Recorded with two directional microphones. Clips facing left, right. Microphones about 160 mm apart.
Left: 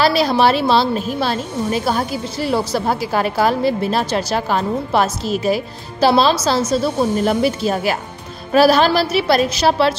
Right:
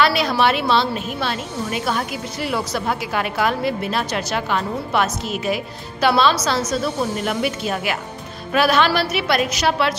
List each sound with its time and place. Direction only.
0.0 s a woman's voice: 35° left (ahead or behind)